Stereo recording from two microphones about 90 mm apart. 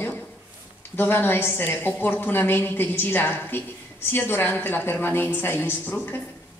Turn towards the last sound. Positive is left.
turn(degrees=20)  # may be behind; listen again after turning